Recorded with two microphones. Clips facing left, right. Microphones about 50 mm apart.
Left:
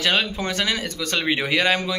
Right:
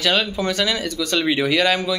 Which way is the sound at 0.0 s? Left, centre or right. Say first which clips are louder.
Right 2 dB; left.